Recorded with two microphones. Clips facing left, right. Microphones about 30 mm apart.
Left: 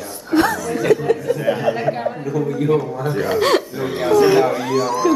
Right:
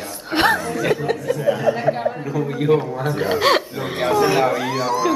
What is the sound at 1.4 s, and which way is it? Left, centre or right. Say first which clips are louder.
Speech: right 1 dB; left.